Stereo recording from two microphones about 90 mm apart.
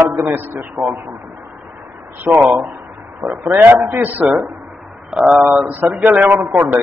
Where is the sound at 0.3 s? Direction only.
25° right (ahead or behind).